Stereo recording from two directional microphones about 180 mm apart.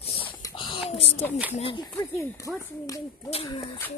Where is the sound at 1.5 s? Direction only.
30° left (ahead or behind).